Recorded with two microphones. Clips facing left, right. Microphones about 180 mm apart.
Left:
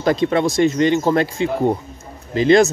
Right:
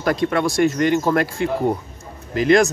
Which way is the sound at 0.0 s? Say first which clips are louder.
Left 3 dB; 25° left (ahead or behind).